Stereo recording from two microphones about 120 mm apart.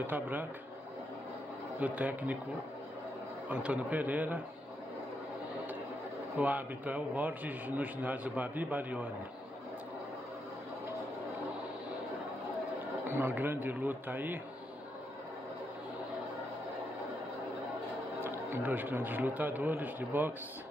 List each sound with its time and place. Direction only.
0.0 s a man's voice: 15° right (ahead or behind)
1.8 s a man's voice: 10° right (ahead or behind)
3.4 s a man's voice: 10° right (ahead or behind)
6.3 s a man's voice: 15° right (ahead or behind)
13.0 s a man's voice: 20° right (ahead or behind)
18.2 s a man's voice: 15° right (ahead or behind)